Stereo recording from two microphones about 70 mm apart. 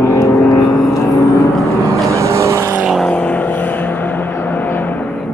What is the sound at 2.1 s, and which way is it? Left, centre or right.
Vehicle, right.